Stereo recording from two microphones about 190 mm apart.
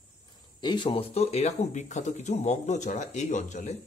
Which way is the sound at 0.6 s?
25° left (ahead or behind).